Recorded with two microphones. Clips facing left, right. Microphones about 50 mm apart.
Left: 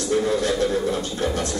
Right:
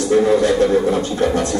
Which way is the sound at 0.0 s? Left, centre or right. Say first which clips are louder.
Right 7 dB; right.